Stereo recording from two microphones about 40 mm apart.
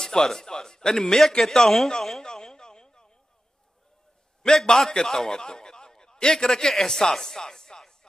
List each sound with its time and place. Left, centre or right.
0.0 s a man's voice: centre
1.4 s a man's voice: centre
1.9 s a sound: centre
4.4 s a man's voice: centre